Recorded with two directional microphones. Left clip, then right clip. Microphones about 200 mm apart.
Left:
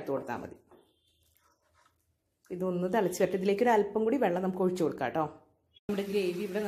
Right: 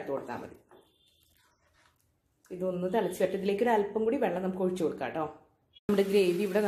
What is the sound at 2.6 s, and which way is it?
Speech, 35° left (ahead or behind).